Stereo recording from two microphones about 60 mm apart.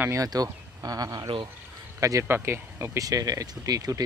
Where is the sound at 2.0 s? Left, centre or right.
Right.